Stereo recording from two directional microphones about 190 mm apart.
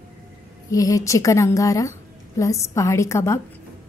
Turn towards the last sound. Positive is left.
turn(degrees=15)  # may be behind; listen again after turning